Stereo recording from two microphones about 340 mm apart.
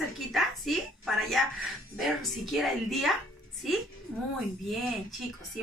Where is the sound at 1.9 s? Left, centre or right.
Centre.